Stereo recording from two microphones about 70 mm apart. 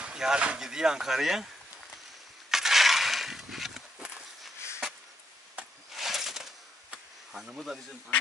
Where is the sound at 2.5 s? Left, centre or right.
Centre.